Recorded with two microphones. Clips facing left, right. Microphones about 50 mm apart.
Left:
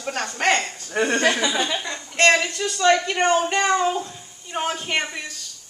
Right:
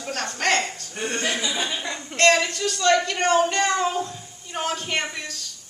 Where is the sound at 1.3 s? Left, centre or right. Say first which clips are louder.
Left 4 dB; left.